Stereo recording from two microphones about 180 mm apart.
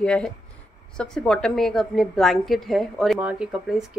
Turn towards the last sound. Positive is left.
turn(degrees=0)  # may be behind; listen again after turning